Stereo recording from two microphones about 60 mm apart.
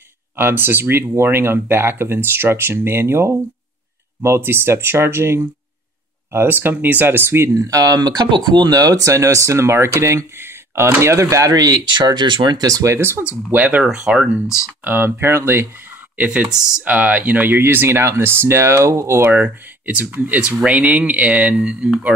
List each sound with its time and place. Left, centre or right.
0.4 s speech: right
6.3 s speech: right
7.5 s speech: right
12.5 s speech: right
12.9 s speech: right
13.5 s speech: right
13.8 s speech: centre
14.9 s speech: right
16.8 s speech: right
19.2 s speech: right